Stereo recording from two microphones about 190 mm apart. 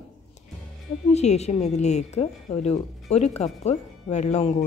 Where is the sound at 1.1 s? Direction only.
35° left (ahead or behind).